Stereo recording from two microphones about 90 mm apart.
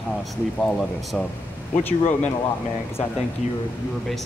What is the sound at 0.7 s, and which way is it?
Speech, 5° left (ahead or behind).